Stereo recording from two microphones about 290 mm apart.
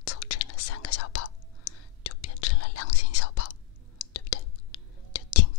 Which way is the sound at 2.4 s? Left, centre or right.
Left.